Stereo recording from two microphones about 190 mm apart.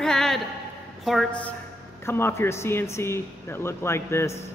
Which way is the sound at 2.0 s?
10° left (ahead or behind).